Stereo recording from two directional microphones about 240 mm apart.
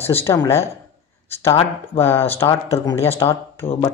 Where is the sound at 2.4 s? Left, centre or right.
Centre.